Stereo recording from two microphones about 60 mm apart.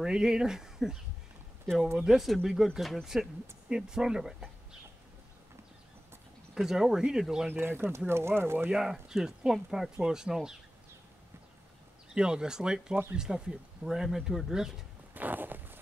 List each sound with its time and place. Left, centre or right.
0.0 s speech: centre
2.0 s speech: centre
6.5 s speech: centre
7.4 s speech: right
8.7 s speech: centre
12.1 s speech: centre
15.1 s a sound: right